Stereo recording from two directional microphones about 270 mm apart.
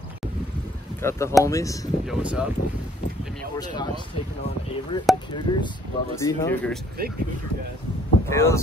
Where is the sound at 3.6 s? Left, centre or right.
Centre.